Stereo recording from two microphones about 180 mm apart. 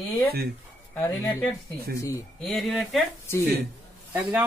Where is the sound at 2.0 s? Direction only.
15° left (ahead or behind).